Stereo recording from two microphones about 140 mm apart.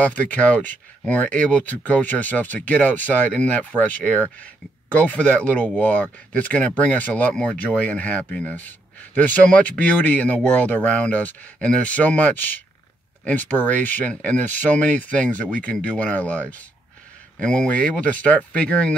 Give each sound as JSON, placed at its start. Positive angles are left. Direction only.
{"t": 0.0, "sound": "speech", "side_deg": 10}